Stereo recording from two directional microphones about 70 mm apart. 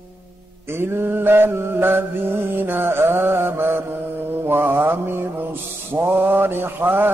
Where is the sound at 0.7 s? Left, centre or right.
Right.